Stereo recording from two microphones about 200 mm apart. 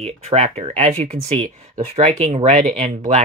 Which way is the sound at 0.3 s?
30° right (ahead or behind).